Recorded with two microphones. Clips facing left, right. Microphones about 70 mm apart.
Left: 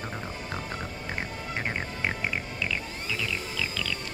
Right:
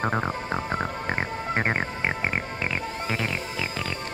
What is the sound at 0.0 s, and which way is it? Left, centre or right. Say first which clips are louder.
Music: right 11 dB; right.